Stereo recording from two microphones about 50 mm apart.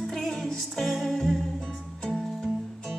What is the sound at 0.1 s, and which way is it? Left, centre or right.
Music, centre.